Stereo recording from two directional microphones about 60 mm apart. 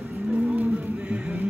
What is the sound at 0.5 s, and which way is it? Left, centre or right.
Music, right.